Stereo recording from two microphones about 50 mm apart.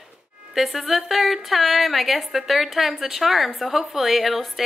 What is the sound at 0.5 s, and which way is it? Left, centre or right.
A woman's voice, centre.